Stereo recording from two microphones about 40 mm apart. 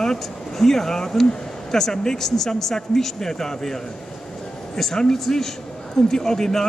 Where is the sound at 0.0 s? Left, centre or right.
Centre.